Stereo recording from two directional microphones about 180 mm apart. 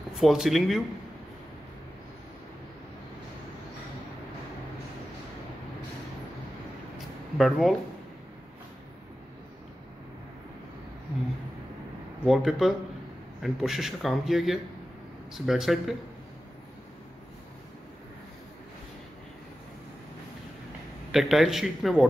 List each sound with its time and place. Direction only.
0.1 s a man's voice: centre (ahead or behind)
7.3 s a man's voice: centre (ahead or behind)
12.3 s a man's voice: centre (ahead or behind)
21.1 s a man's voice: centre (ahead or behind)